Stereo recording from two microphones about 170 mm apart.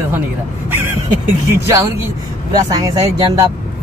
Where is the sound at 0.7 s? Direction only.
15° right (ahead or behind).